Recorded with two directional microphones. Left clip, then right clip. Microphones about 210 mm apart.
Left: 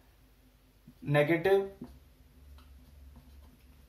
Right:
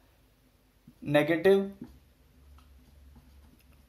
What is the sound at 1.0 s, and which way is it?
Speech, 50° right (ahead or behind).